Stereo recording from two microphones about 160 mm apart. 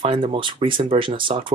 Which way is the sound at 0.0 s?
35° right (ahead or behind).